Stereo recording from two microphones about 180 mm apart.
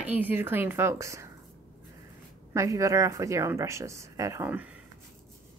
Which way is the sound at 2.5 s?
15° right (ahead or behind).